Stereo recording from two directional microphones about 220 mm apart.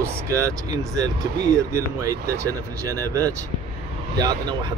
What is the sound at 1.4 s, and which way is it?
A man's voice, 15° right (ahead or behind).